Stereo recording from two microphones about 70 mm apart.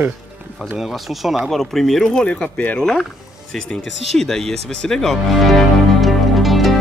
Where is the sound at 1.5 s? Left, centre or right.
Centre.